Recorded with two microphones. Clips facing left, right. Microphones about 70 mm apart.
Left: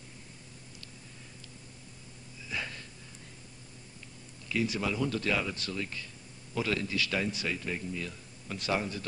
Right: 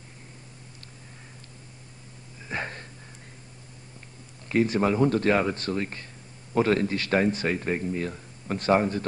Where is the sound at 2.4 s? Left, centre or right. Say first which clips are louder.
Right 5 dB; right.